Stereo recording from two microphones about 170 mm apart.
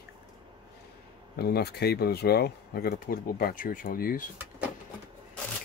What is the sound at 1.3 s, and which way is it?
Speech, 70° left (ahead or behind).